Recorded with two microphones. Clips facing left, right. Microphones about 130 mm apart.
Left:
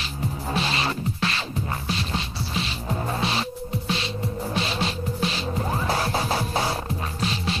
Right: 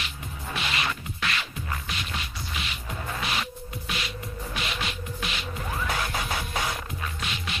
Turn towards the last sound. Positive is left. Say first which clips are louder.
# left 7 dB
turn(degrees=35)  # may be behind; listen again after turning